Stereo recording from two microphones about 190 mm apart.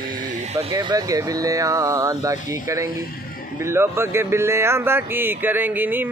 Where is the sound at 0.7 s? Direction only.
20° right (ahead or behind).